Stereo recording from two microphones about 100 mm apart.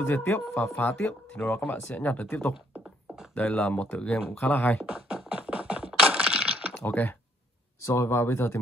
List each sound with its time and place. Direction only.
0.0 s speech: 20° left (ahead or behind)
5.3 s music: 10° right (ahead or behind)
6.7 s speech: 20° left (ahead or behind)